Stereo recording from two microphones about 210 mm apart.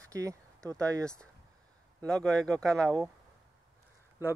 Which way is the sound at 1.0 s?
5° left (ahead or behind).